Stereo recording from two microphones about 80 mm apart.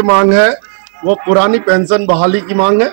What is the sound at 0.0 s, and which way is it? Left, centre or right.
A man's voice, centre.